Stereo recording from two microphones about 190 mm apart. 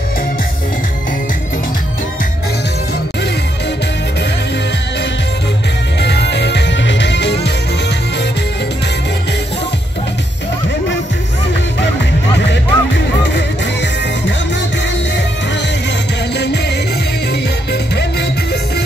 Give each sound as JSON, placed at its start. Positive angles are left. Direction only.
{"t": 6.0, "sound": "music", "side_deg": 65}
{"t": 12.4, "sound": "music", "side_deg": 70}